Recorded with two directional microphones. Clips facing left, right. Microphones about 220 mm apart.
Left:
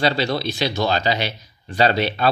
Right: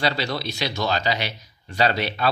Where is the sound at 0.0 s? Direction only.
30° left (ahead or behind).